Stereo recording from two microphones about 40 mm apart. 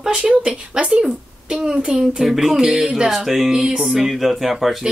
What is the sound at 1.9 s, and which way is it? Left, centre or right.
Speech, centre.